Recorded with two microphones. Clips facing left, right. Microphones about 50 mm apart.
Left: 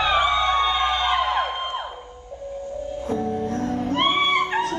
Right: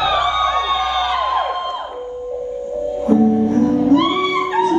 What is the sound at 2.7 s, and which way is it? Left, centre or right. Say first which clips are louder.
Music: right 12 dB; right.